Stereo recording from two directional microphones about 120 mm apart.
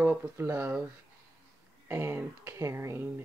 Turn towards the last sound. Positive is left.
turn(degrees=-20)  # may be behind; listen again after turning